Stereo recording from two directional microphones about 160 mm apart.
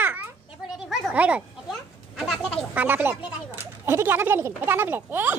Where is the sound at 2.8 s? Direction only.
15° right (ahead or behind).